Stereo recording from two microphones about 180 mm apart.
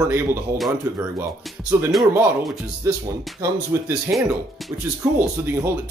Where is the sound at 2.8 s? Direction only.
20° right (ahead or behind).